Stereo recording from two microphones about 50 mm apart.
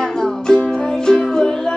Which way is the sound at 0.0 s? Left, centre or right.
Centre.